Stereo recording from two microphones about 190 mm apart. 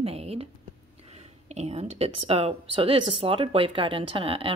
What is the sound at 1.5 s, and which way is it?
Speech, 35° right (ahead or behind).